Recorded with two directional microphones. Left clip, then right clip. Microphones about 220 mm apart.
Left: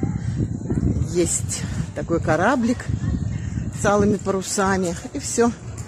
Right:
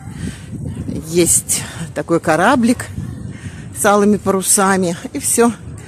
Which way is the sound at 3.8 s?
40° right (ahead or behind).